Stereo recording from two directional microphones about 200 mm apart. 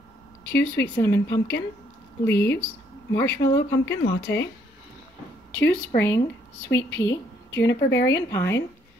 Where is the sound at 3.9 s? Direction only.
60° left (ahead or behind).